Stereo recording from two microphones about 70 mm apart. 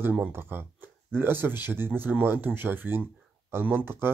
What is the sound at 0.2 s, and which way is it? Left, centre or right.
Speech, right.